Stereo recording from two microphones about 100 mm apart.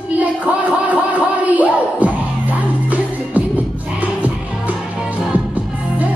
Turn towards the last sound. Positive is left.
turn(degrees=-15)  # may be behind; listen again after turning